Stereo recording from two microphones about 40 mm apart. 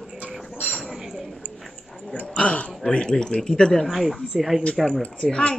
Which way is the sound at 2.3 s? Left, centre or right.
Left.